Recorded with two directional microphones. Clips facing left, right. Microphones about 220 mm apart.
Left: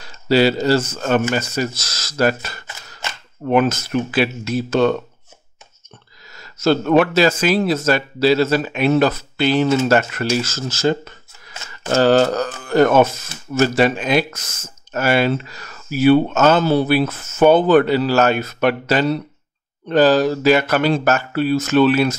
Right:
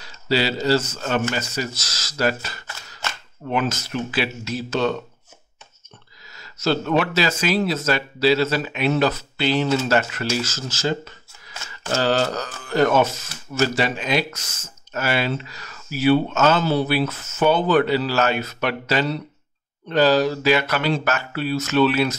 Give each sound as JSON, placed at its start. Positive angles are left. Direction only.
{"t": 0.0, "sound": "speech", "side_deg": 50}
{"t": 3.4, "sound": "speech", "side_deg": 55}
{"t": 6.3, "sound": "speech", "side_deg": 50}